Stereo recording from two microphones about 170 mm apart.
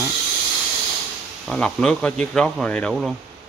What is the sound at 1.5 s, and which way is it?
Speech, 5° left (ahead or behind).